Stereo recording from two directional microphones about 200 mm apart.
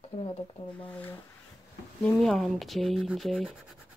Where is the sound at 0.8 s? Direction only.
10° left (ahead or behind).